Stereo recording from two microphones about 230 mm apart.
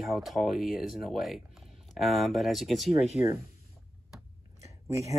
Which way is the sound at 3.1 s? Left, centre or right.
Left.